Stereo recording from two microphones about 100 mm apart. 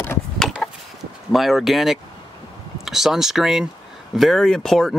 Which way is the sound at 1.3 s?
Centre (ahead or behind).